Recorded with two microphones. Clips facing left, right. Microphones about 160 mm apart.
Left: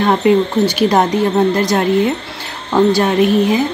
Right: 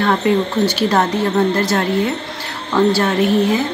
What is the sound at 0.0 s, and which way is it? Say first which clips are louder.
Speech: left 3 dB; 20° left (ahead or behind).